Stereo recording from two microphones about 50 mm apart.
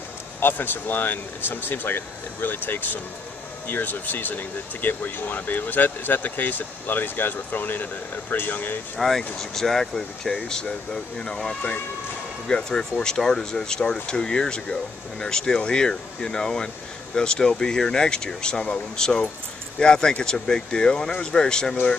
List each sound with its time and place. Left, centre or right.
0.4 s speech: left
8.9 s speech: centre